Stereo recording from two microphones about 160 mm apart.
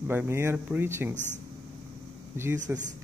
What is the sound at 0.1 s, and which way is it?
Speech, 15° right (ahead or behind).